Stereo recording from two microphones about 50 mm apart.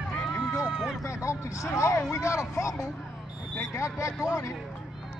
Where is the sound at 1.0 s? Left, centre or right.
Left.